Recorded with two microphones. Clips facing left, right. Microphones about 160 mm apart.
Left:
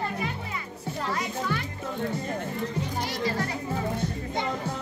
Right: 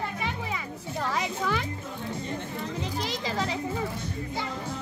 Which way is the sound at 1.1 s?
90° right.